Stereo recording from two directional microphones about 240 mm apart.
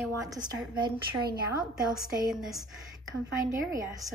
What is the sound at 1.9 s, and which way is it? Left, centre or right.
Speech, centre.